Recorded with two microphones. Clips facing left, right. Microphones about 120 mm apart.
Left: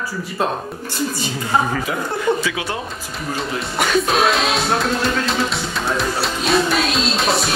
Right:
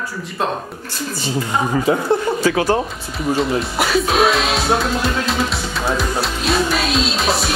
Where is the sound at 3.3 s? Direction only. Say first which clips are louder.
Right 2 dB; centre (ahead or behind).